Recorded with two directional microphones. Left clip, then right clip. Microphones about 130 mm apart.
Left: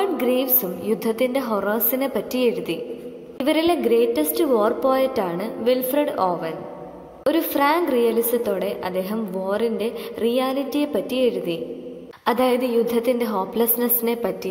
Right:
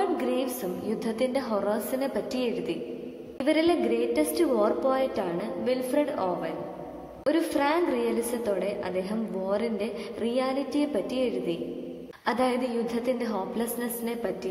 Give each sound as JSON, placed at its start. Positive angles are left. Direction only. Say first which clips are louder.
{"t": 0.0, "sound": "a woman's voice", "louder": "left 6 dB", "side_deg": 20}